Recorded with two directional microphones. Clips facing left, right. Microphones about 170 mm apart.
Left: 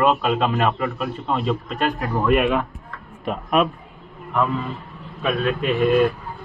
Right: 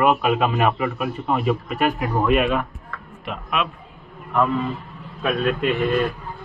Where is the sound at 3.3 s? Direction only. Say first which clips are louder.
Left 6 dB; 45° left (ahead or behind).